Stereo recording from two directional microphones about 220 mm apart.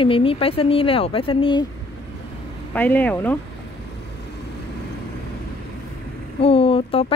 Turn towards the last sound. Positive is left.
turn(degrees=25)  # may be behind; listen again after turning